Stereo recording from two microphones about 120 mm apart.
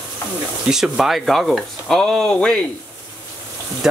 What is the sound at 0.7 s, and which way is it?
Speech, 5° right (ahead or behind).